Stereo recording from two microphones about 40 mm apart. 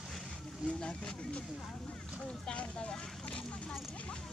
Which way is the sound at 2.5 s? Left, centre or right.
Left.